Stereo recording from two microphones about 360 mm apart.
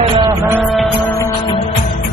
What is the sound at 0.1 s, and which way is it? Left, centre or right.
Music, centre.